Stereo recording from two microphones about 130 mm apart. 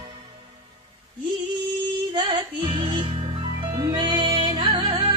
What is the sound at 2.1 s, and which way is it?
Music, 35° right (ahead or behind).